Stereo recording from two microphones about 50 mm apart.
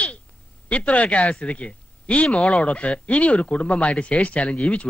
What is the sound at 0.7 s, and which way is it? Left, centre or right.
Speech, left.